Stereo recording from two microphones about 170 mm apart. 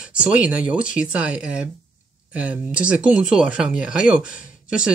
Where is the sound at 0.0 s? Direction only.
5° right (ahead or behind).